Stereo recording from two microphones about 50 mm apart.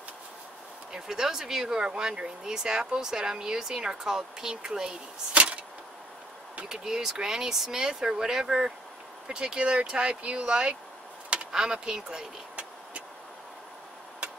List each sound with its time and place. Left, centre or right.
0.9 s speech: centre
5.3 s vehicle: right
6.7 s speech: centre